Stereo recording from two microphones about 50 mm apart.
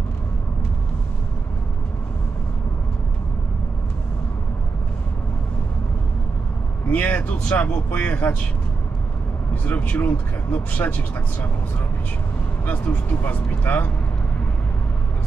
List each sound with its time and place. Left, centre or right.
6.9 s speech: left
9.5 s speech: left
12.6 s speech: left